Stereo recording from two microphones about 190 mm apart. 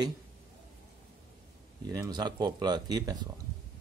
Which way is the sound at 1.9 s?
20° right (ahead or behind).